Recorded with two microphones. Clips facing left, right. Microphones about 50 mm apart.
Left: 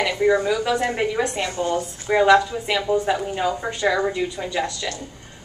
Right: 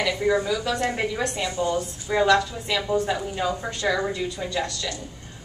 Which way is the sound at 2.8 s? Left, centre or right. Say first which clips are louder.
Left 3 dB; centre.